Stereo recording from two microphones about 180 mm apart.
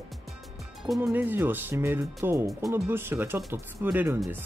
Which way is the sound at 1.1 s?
10° right (ahead or behind).